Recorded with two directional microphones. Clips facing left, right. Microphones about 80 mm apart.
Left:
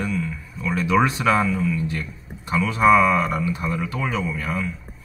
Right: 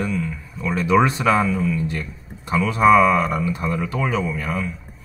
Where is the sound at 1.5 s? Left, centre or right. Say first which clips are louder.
Right 1 dB; centre.